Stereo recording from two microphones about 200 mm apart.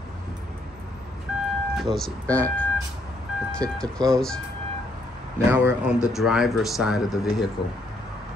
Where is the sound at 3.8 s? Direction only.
Centre (ahead or behind).